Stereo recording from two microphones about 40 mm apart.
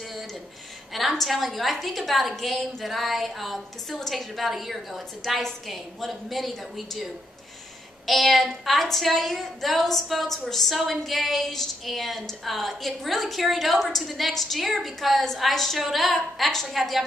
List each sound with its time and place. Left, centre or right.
1.1 s a woman's voice: centre
8.1 s a woman's voice: centre